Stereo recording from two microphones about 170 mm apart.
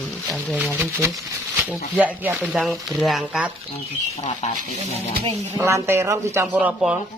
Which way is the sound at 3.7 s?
40° left (ahead or behind).